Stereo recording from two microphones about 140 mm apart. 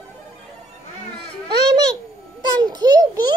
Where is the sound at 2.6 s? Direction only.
30° right (ahead or behind).